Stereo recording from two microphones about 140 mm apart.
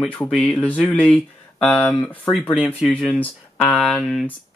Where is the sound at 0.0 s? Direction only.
10° left (ahead or behind).